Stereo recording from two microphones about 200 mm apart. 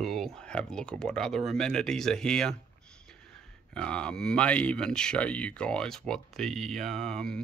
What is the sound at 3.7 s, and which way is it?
Speech, 5° left (ahead or behind).